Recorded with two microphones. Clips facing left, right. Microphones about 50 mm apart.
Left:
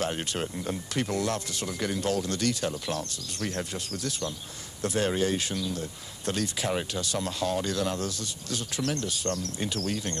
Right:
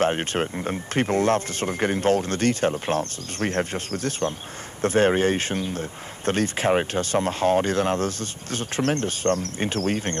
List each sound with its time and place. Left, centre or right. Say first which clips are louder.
0.0 s speech: right 8 dB; right